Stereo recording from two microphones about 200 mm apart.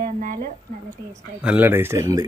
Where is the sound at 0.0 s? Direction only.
45° right (ahead or behind).